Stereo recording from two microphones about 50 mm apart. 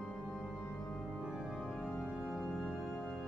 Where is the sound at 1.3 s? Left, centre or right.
Centre.